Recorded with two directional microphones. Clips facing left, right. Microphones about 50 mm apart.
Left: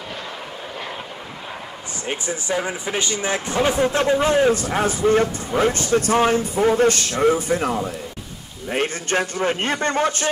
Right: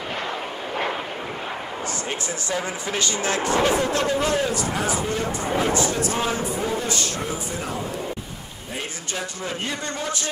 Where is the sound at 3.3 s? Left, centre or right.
Right.